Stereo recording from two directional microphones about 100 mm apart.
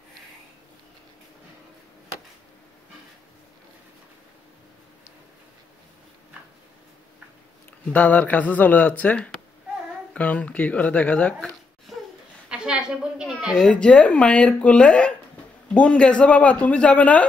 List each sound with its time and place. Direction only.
7.9 s speech: 15° left (ahead or behind)
11.3 s a sound: centre (ahead or behind)
13.6 s speech: 10° left (ahead or behind)